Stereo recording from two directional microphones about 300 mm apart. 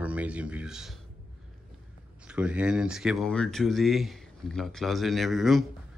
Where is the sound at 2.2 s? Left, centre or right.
Centre.